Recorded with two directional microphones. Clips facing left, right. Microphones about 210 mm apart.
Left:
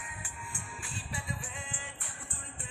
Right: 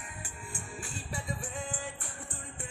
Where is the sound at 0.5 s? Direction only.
45° right (ahead or behind).